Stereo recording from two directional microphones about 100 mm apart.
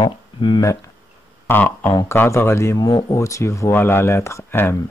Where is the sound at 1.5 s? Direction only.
20° left (ahead or behind).